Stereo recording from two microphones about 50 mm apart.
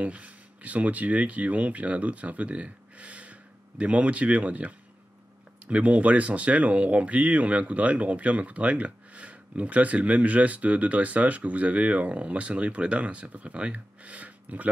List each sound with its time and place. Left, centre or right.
0.0 s speech: right